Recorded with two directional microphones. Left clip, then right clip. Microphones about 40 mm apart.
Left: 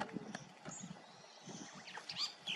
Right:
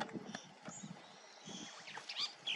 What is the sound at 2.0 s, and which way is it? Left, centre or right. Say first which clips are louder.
Rodents: even; right.